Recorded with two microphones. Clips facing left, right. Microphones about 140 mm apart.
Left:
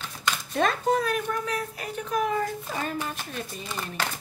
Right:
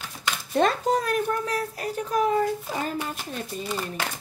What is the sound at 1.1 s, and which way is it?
Speech, 35° right (ahead or behind).